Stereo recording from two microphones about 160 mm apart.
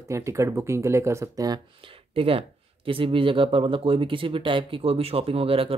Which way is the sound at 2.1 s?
35° right (ahead or behind).